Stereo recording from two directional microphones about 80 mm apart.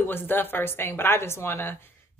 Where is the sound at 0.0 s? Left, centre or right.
Left.